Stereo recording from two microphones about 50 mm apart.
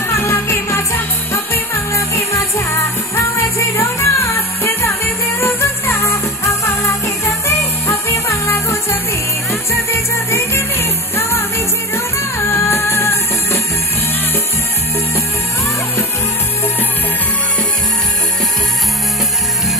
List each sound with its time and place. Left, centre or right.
0.1 s music: left
4.2 s music: left
5.4 s music: left
5.9 s music: left
7.4 s music: left
9.8 s music: left